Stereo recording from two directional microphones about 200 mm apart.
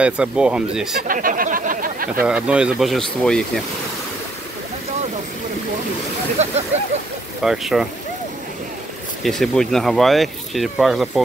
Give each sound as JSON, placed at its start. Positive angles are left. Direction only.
{"t": 0.0, "sound": "speech", "side_deg": -5}
{"t": 0.9, "sound": "speech", "side_deg": -45}
{"t": 2.2, "sound": "speech", "side_deg": -5}
{"t": 6.4, "sound": "speech", "side_deg": -35}
{"t": 7.4, "sound": "speech", "side_deg": 0}
{"t": 9.2, "sound": "speech", "side_deg": 0}